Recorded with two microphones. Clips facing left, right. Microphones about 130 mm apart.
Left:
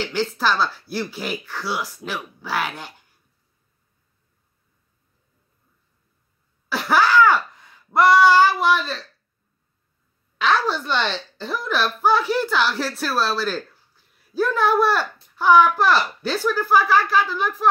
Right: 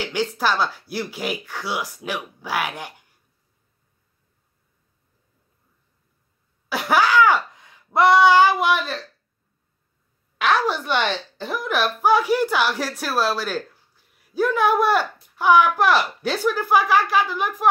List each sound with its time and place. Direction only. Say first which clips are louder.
0.0 s a woman's voice: even; 15° right (ahead or behind)
6.7 s a sound: even; 15° right (ahead or behind)
10.4 s a woman's voice: even; 15° right (ahead or behind)